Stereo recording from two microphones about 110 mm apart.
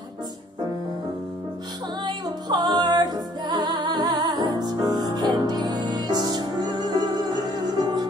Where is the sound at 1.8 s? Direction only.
40° right (ahead or behind).